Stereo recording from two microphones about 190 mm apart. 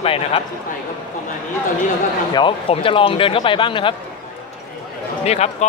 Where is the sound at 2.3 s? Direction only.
25° left (ahead or behind).